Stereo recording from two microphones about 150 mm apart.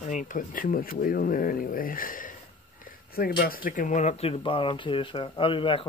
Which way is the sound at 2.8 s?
80° left.